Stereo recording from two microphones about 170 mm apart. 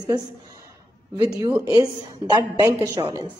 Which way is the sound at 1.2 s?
20° right (ahead or behind).